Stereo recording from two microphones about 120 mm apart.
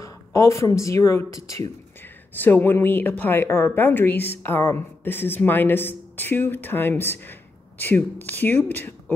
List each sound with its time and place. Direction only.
0.0 s speech: 25° left (ahead or behind)
2.3 s a woman's voice: 15° left (ahead or behind)